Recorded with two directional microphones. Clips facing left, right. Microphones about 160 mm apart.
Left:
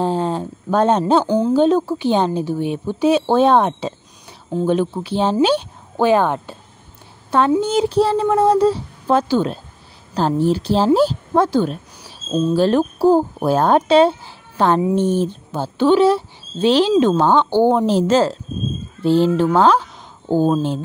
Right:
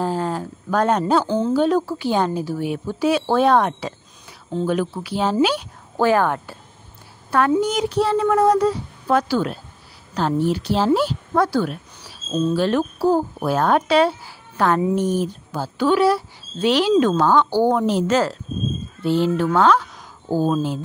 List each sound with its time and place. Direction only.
0.0 s a sound: 25° left (ahead or behind)
1.2 s a woman's voice: 15° left (ahead or behind)
12.5 s speech: 35° left (ahead or behind)
20.2 s speech: 20° left (ahead or behind)